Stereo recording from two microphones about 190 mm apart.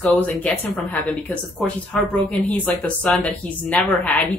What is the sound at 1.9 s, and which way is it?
A woman's voice, 5° left (ahead or behind).